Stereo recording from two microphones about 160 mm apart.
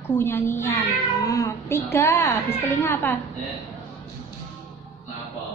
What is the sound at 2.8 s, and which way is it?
Child singing, 15° left (ahead or behind).